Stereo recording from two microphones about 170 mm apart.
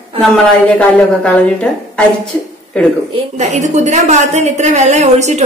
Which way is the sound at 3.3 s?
45° right (ahead or behind).